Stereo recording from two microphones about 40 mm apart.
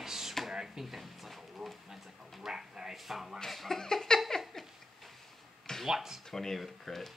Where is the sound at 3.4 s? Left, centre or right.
Centre.